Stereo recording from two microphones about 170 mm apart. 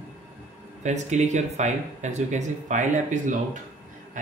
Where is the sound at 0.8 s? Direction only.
45° right (ahead or behind).